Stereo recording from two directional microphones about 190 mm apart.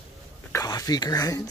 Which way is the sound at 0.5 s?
20° left (ahead or behind).